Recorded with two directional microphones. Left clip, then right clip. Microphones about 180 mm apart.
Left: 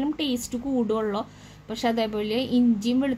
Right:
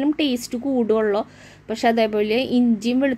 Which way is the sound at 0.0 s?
15° right (ahead or behind).